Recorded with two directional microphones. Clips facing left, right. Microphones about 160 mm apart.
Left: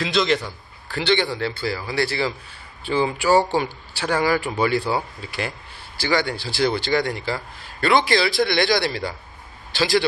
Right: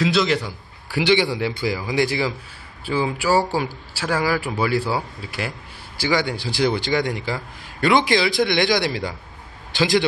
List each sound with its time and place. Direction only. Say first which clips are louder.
0.0 s a man's voice: right 1 dB; 5° right (ahead or behind)